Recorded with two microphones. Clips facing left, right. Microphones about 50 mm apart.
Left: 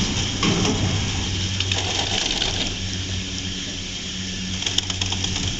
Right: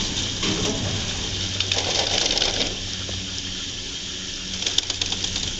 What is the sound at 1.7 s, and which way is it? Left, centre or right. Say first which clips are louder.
Sewing machine: right 2 dB; centre.